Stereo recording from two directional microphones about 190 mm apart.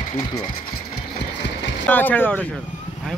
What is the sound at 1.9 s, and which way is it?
Speech, 10° left (ahead or behind).